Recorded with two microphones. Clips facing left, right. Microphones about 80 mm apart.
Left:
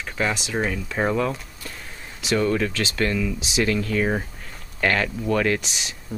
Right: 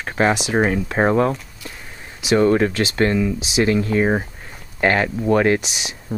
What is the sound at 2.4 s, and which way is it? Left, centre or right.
Speech, right.